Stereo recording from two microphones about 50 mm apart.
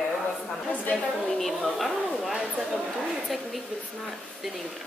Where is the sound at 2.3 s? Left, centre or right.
Centre.